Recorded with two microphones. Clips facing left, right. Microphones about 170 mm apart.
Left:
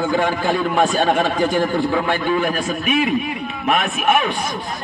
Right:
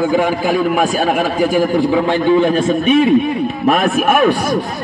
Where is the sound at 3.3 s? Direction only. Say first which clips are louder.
Right 6 dB; 40° right (ahead or behind).